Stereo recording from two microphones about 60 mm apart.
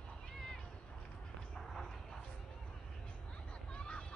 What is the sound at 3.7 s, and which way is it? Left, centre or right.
Vehicle, centre.